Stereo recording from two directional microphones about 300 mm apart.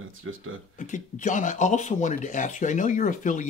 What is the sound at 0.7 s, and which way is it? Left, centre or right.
Speech, left.